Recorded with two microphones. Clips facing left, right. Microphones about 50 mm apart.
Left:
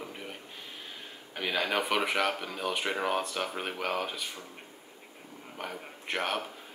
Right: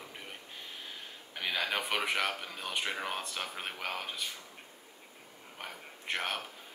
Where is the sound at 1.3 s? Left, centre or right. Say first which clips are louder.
Left 4 dB; centre.